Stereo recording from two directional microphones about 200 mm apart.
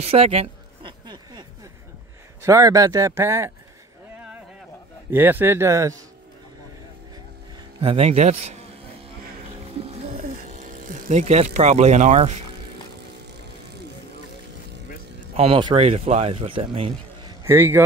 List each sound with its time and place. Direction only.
0.0 s a sound: 30° right (ahead or behind)
2.4 s speech: 15° right (ahead or behind)
5.1 s speech: 10° right (ahead or behind)
7.8 s speech: 30° right (ahead or behind)
9.8 s a sound: 30° right (ahead or behind)
15.3 s speech: 25° right (ahead or behind)
17.4 s a man's voice: 10° right (ahead or behind)